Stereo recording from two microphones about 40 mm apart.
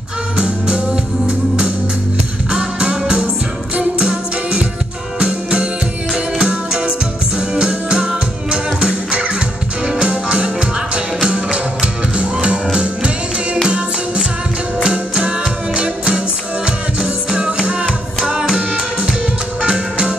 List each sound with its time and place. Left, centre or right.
2.5 s music: right
4.0 s music: right
16.6 s music: right
19.6 s music: right